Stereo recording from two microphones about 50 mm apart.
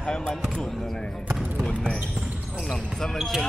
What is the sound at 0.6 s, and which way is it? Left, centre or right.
Speech, centre.